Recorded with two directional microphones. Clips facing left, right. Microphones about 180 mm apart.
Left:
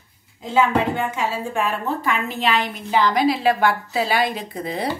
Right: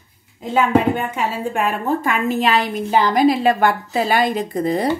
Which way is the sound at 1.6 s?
45° right (ahead or behind).